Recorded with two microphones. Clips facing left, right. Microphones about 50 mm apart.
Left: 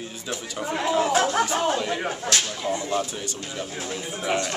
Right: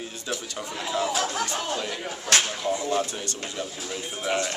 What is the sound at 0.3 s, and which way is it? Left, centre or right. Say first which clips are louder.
Speech: left 2 dB; centre.